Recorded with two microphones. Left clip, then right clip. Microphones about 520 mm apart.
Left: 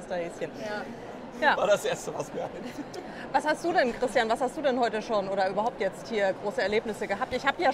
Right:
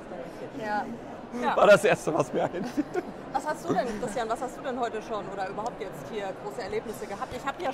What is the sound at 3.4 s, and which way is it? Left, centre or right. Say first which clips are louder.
Speech: left 3 dB; left.